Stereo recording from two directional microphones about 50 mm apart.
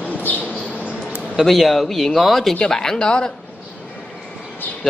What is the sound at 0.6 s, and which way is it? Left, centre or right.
Squawk, left.